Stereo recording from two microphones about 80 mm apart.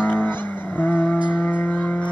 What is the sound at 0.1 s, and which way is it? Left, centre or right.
Vehicle, left.